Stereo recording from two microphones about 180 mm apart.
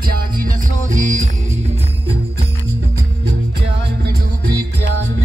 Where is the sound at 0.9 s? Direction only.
40° right (ahead or behind).